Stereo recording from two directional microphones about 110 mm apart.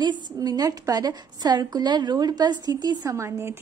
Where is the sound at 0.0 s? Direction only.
40° right (ahead or behind).